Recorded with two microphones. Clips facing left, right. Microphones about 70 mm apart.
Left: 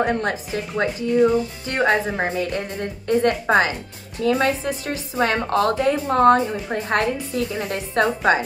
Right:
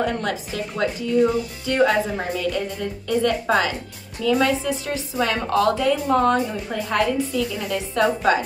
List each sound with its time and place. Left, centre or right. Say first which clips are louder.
0.0 s speech: left 2 dB; left